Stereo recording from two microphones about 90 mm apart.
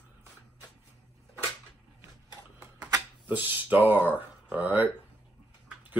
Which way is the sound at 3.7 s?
20° right (ahead or behind).